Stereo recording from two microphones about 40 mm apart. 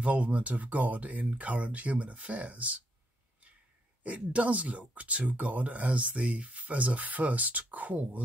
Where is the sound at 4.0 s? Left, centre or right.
Right.